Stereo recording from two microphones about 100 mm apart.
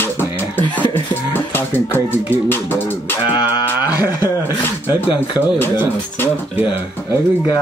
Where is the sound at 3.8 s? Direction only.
35° left (ahead or behind).